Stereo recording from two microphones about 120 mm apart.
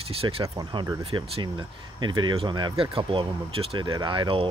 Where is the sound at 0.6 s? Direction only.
40° right (ahead or behind).